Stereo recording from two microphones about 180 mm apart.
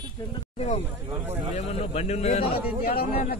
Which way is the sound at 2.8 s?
55° left (ahead or behind).